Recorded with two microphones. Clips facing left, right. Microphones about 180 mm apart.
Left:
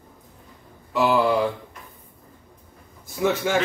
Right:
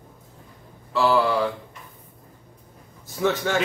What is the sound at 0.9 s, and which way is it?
Speech, 20° left (ahead or behind).